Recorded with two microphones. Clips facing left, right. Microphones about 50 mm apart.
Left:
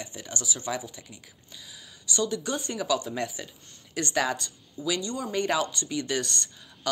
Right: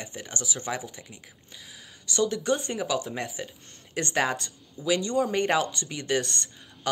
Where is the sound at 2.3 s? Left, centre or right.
Right.